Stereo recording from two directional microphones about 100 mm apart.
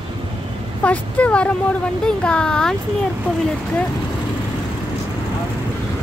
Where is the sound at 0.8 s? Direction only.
15° left (ahead or behind).